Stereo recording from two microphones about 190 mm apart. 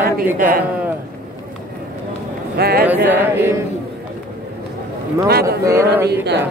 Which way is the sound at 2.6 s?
55° right (ahead or behind).